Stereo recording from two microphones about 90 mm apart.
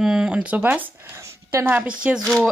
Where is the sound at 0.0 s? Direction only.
10° right (ahead or behind).